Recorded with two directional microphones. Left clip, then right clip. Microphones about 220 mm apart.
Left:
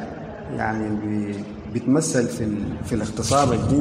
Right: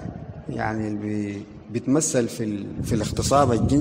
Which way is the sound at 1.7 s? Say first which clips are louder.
Left 1 dB; 40° right (ahead or behind).